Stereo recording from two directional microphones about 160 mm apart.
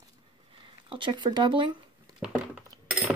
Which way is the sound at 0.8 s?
30° right (ahead or behind).